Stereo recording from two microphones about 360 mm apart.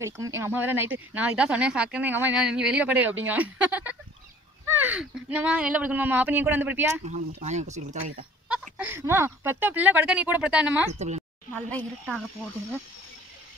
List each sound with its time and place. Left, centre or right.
0.0 s speech: centre
7.1 s speech: centre
8.5 s speech: centre
10.9 s a woman's voice: centre
11.5 s speech: centre